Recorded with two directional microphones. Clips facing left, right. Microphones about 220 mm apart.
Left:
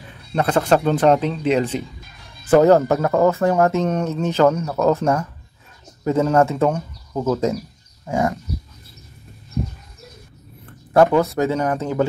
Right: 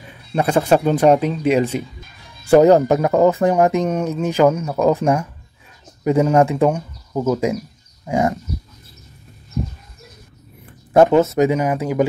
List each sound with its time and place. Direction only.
0.3 s speech: 10° right (ahead or behind)
10.6 s a sound: 20° right (ahead or behind)
11.3 s speech: 15° right (ahead or behind)